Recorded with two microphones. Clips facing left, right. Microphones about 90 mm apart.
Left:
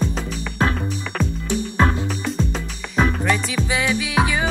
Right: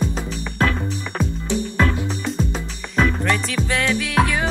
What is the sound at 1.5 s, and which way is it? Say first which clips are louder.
Music: even; 20° left (ahead or behind).